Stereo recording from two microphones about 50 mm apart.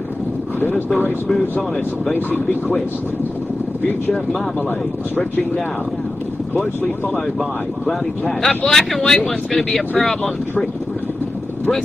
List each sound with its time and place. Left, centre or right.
0.6 s speech: left
8.4 s speech: centre